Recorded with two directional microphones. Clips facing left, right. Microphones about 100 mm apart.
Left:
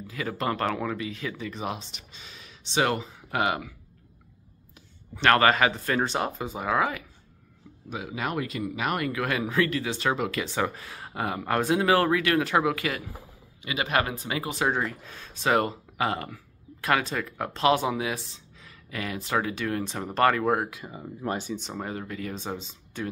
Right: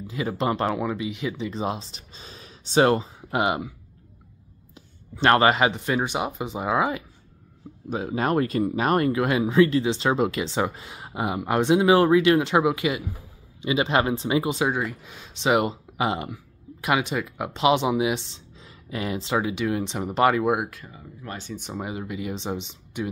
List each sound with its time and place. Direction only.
0.0 s speech: 20° right (ahead or behind)
1.5 s speech: 30° right (ahead or behind)
4.7 s speech: 25° right (ahead or behind)
7.9 s speech: 40° right (ahead or behind)
9.2 s speech: 20° right (ahead or behind)
14.7 s speech: 5° right (ahead or behind)
20.9 s speech: 25° left (ahead or behind)
21.6 s speech: 10° right (ahead or behind)